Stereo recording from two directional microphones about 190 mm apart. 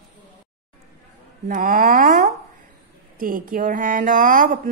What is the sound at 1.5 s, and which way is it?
A woman's voice, 45° right (ahead or behind).